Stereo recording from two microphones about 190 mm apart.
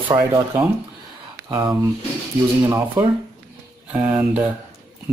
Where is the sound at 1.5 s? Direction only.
15° right (ahead or behind).